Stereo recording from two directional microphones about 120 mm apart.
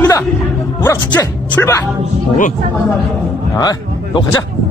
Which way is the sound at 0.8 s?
15° left (ahead or behind).